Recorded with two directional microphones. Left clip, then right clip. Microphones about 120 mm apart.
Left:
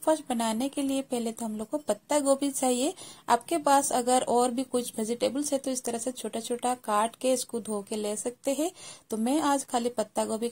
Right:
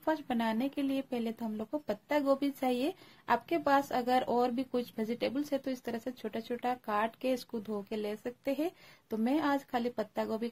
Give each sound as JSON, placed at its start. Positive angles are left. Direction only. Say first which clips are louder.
{"t": 0.0, "sound": "speech", "louder": "left 6 dB", "side_deg": 30}